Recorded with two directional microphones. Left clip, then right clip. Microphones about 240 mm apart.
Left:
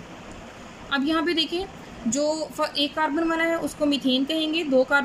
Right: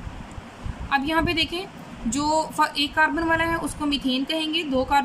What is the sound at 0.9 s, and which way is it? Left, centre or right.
Speech, centre.